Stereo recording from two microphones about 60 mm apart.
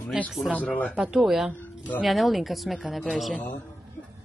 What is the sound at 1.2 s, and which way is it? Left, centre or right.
Speech, centre.